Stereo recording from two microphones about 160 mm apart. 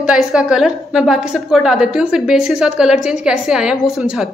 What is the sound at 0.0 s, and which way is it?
A woman's voice, 5° right (ahead or behind).